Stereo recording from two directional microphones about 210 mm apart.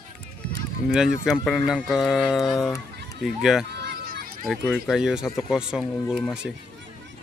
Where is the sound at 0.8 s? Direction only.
Centre (ahead or behind).